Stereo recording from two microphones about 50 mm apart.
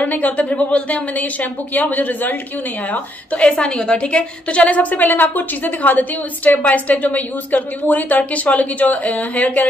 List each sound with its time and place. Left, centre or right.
0.0 s a woman's voice: left
3.4 s a woman's voice: centre